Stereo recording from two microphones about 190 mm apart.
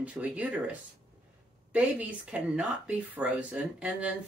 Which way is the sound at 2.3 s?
5° right (ahead or behind).